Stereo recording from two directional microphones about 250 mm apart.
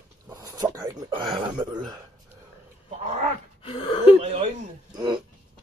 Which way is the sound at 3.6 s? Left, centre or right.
Left.